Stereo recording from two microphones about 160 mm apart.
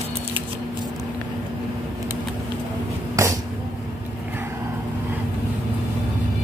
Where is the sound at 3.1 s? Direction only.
20° right (ahead or behind).